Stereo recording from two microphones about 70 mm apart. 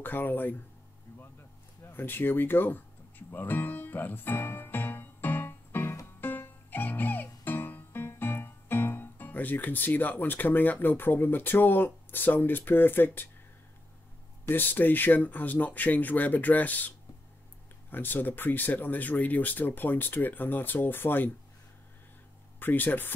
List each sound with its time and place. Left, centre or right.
0.0 s speech: left
1.9 s music: left
14.5 s speech: left
17.9 s speech: left
22.6 s speech: left